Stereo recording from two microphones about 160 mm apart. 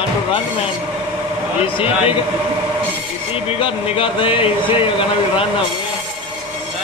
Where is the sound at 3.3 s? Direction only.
35° left (ahead or behind).